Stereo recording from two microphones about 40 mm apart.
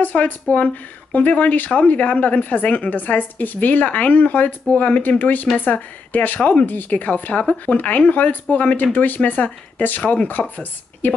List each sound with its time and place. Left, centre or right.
0.0 s a woman's voice: left